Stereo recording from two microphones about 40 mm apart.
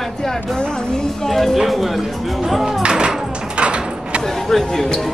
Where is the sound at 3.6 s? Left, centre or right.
Right.